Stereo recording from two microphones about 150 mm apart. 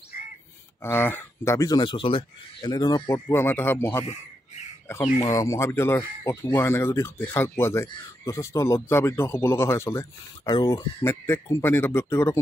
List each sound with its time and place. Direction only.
0.8 s speech: 15° left (ahead or behind)
5.2 s speech: 20° left (ahead or behind)